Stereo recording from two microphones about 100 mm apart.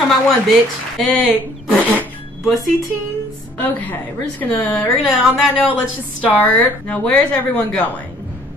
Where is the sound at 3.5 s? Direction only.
15° left (ahead or behind).